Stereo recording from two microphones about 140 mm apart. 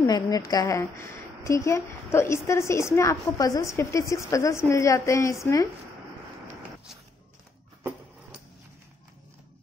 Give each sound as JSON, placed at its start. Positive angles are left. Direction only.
{"t": 0.0, "sound": "a woman's voice", "side_deg": 25}